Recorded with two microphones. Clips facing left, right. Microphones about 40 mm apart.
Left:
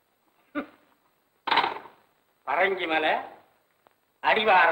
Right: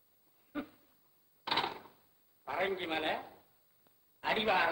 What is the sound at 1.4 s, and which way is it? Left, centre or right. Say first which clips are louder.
Chopping: left 11 dB; left.